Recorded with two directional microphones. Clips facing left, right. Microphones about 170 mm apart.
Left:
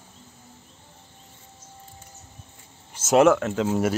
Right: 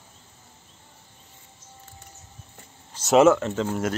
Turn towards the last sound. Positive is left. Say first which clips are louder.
# even
turn(degrees=5)  # may be behind; listen again after turning